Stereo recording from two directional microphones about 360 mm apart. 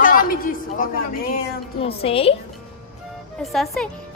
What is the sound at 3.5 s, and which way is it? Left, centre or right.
Speech, centre.